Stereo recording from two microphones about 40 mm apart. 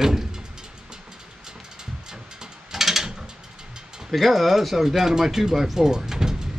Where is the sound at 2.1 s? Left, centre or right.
Centre.